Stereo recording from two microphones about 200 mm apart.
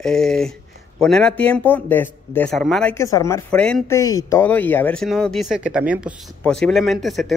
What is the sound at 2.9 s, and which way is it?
Speech, 15° left (ahead or behind).